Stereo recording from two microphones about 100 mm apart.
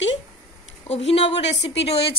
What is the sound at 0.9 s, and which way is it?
A woman's voice, 90° left.